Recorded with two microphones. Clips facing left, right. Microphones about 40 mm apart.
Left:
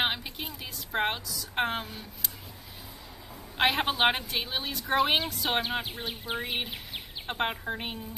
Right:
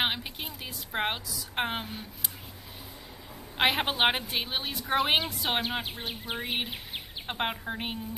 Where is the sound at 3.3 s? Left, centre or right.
Centre.